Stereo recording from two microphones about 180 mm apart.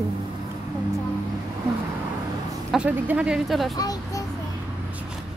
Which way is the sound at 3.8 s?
20° left (ahead or behind).